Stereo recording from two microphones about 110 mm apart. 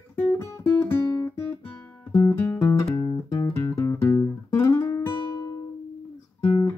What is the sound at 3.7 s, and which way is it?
Guitar, 25° left (ahead or behind).